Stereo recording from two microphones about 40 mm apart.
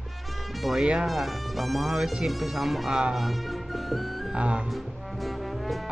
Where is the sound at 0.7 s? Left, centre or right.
Centre.